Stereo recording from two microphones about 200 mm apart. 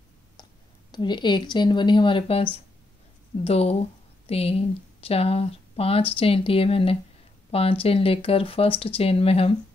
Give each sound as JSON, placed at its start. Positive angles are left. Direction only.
{"t": 0.9, "sound": "speech", "side_deg": 20}